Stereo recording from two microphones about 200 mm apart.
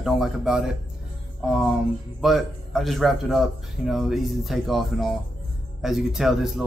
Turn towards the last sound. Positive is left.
turn(degrees=0)  # may be behind; listen again after turning